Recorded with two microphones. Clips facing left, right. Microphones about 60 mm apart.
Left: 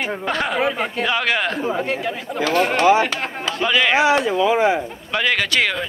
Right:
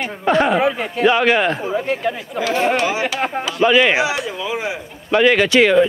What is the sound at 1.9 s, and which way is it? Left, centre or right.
Speech, centre.